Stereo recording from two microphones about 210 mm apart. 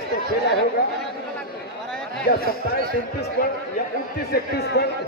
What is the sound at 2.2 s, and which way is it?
Speech, 50° left (ahead or behind).